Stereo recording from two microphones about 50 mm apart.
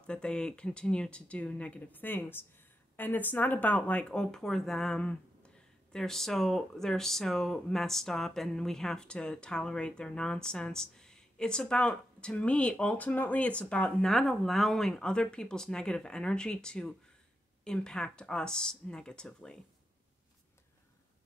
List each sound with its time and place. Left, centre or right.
0.0 s speech: centre
4.0 s speech: centre
13.9 s speech: centre